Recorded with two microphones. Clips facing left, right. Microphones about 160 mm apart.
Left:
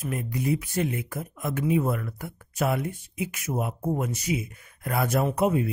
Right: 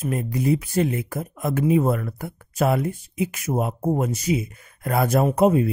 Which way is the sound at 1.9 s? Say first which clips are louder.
Right 5 dB; 50° right (ahead or behind).